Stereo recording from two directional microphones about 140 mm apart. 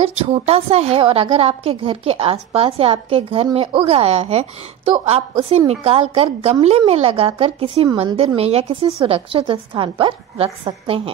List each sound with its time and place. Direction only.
0.0 s a woman's voice: 45° right (ahead or behind)